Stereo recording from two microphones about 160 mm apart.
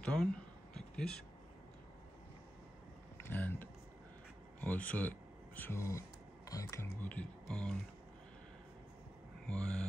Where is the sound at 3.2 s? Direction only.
10° left (ahead or behind).